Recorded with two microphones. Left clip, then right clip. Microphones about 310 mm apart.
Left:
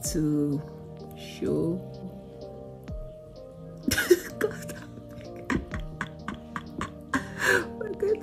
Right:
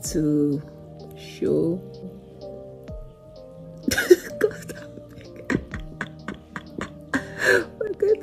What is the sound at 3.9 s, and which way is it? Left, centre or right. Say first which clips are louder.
Music: right 5 dB; centre.